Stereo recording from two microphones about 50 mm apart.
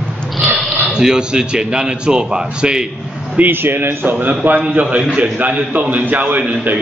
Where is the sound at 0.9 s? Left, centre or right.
Centre.